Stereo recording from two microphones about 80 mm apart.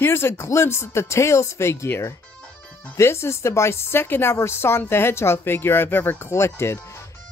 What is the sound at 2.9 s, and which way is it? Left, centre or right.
Speech, left.